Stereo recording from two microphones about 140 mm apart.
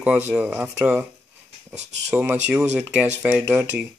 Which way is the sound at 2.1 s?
15° right (ahead or behind).